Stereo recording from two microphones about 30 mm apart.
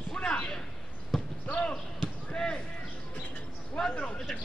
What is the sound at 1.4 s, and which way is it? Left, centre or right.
Basketball bounce, left.